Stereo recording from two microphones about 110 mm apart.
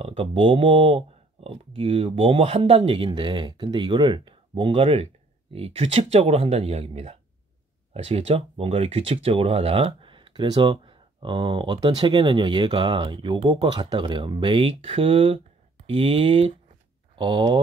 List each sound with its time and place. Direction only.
0.0 s speech: 65° right (ahead or behind)
5.5 s speech: 65° right (ahead or behind)
17.1 s speech: 45° right (ahead or behind)